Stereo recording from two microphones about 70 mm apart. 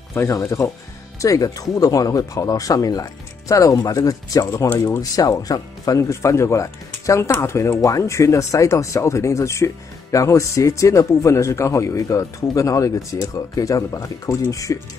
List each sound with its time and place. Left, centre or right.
0.1 s speech: left
1.2 s speech: left